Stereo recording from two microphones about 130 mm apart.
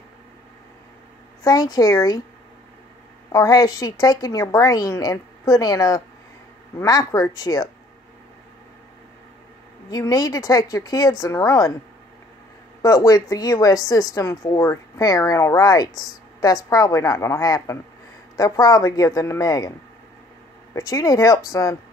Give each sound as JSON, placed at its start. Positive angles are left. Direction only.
{"t": 1.4, "sound": "a woman's voice", "side_deg": 30}
{"t": 3.3, "sound": "a woman's voice", "side_deg": 25}
{"t": 9.8, "sound": "a woman's voice", "side_deg": 30}
{"t": 12.8, "sound": "a woman's voice", "side_deg": 25}
{"t": 20.7, "sound": "a woman's voice", "side_deg": 25}